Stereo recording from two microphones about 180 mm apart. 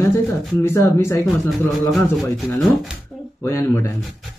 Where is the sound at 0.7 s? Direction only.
15° left (ahead or behind).